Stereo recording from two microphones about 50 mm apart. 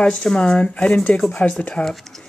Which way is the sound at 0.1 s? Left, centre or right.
Centre.